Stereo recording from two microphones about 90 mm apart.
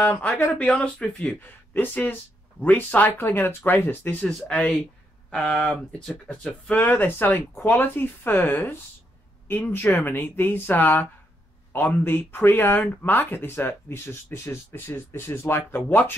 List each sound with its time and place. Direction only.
0.4 s speech: 20° left (ahead or behind)
4.2 s speech: 5° left (ahead or behind)
4.5 s speech: 15° left (ahead or behind)
6.2 s speech: 15° left (ahead or behind)